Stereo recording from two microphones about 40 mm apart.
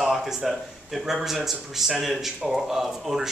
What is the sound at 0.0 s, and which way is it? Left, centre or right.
Speech, centre.